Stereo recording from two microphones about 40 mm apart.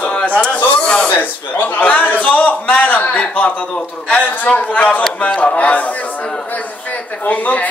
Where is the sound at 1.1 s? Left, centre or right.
Left.